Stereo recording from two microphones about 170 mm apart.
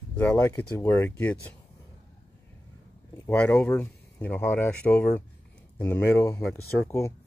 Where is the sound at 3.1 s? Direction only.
10° left (ahead or behind).